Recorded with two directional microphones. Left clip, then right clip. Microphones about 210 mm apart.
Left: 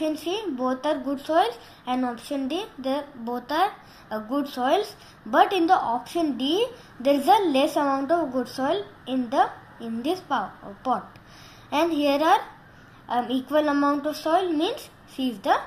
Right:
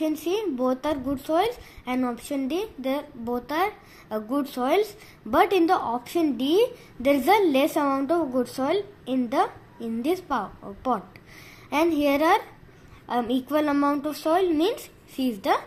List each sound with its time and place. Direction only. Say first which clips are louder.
0.0 s a woman's voice: right 1 dB; 35° right (ahead or behind)